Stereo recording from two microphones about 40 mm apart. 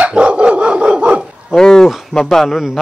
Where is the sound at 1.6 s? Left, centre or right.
Centre.